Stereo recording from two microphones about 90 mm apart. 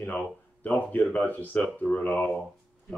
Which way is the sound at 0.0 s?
20° left (ahead or behind).